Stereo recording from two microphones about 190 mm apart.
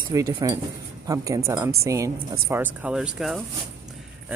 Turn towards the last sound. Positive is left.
turn(degrees=-5)  # may be behind; listen again after turning